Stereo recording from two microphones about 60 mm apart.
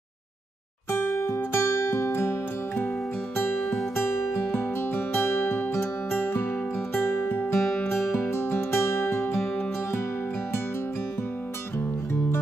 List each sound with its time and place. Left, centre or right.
1.2 s music: left
3.9 s music: left